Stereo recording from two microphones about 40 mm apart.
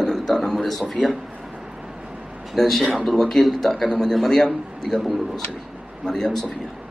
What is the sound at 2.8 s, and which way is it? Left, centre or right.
A man's voice, centre.